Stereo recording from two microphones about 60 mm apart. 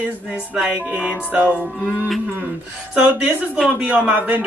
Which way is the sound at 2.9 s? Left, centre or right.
Right.